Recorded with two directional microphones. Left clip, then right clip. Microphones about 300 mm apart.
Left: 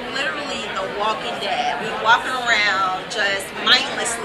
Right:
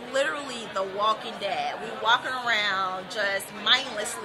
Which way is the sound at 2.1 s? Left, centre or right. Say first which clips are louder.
Left 7 dB; right.